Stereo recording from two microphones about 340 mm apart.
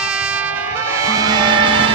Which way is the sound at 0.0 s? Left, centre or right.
Centre.